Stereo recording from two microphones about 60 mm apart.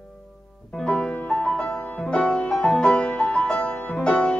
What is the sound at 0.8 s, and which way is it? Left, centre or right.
Music, centre.